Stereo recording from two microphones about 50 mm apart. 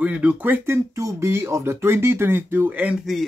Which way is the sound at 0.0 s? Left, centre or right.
Right.